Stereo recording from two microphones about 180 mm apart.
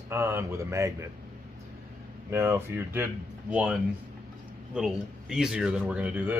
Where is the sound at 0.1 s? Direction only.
15° right (ahead or behind).